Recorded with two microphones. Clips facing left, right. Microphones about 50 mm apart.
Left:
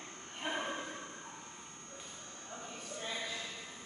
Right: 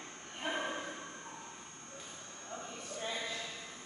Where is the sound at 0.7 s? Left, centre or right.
Centre.